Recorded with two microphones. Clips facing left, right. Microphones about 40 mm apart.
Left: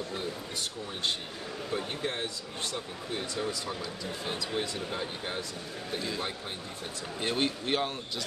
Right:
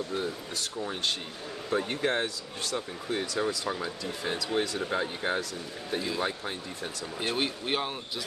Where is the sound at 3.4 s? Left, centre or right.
Right.